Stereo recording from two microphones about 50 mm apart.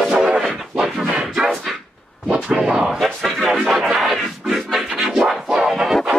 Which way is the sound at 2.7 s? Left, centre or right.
Centre.